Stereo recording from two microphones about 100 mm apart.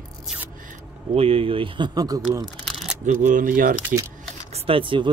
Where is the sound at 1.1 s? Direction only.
75° right (ahead or behind).